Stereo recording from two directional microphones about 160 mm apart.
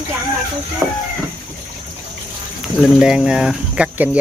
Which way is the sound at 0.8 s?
15° right (ahead or behind).